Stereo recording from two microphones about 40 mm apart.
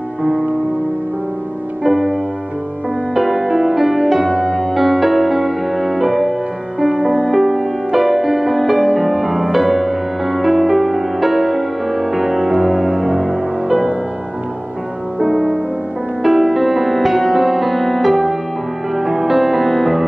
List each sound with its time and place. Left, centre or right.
0.2 s music: right
3.2 s music: centre
6.9 s music: right
7.2 s music: centre
13.0 s music: right
15.1 s music: right
16.2 s music: centre